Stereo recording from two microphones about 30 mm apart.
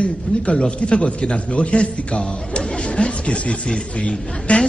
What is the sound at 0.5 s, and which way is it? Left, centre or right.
A man's voice, left.